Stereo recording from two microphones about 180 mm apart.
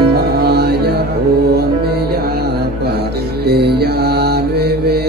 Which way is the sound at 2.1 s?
60° right (ahead or behind).